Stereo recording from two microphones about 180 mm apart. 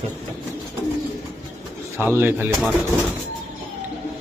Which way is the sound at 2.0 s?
10° right (ahead or behind).